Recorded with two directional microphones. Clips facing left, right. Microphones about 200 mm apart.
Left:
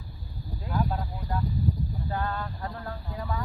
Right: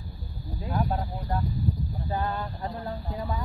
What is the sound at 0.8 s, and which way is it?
Speech, 45° right (ahead or behind).